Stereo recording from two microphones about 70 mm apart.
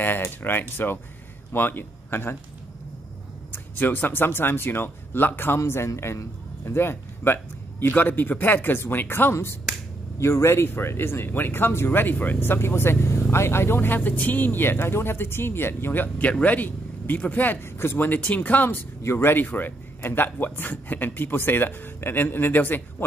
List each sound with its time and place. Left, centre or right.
0.0 s speech: left
3.5 s speech: left
5.6 s a man's voice: left